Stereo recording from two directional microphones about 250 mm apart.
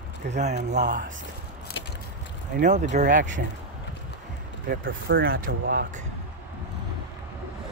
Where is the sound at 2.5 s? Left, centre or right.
Right.